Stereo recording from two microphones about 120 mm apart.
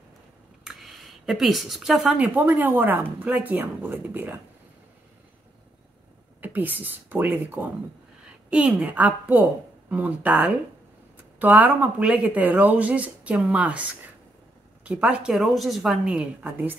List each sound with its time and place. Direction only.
0.7 s speech: centre (ahead or behind); by 4.4 s 15° right (ahead or behind)
6.4 s speech: 15° right (ahead or behind)
14.9 s a woman's voice: 10° right (ahead or behind)